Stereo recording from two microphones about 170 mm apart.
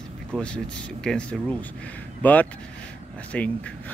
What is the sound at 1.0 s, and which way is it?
Speech, 5° left (ahead or behind).